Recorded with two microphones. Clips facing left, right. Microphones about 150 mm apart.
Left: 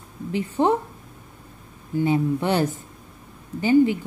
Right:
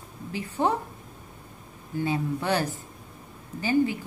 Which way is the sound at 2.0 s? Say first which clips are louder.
Left 5 dB; 25° left (ahead or behind).